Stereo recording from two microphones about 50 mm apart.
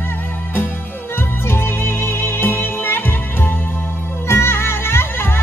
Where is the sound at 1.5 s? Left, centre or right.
Left.